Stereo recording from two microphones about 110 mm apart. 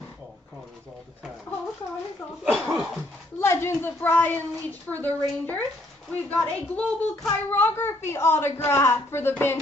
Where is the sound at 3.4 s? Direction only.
25° left (ahead or behind).